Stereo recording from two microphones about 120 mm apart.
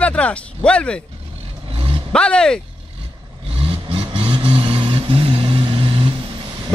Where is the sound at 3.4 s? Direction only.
55° right (ahead or behind).